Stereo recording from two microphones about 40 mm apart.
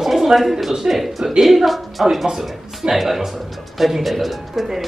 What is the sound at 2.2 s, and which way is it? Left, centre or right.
Speech, centre.